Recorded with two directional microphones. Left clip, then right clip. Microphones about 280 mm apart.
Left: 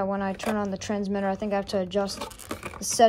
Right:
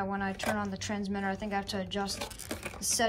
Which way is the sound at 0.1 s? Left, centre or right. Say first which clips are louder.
Left 4 dB; left.